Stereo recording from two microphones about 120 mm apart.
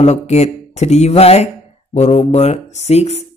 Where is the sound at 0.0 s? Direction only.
65° left (ahead or behind).